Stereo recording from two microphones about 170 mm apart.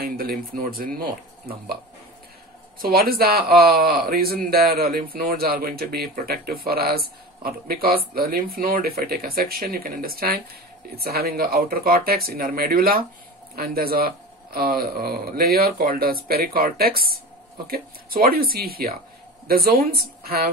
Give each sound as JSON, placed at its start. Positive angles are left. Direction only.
{"t": 0.0, "sound": "a man's voice", "side_deg": -60}
{"t": 2.8, "sound": "a man's voice", "side_deg": -60}